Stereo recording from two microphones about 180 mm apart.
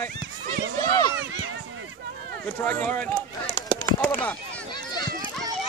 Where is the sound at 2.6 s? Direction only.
10° left (ahead or behind).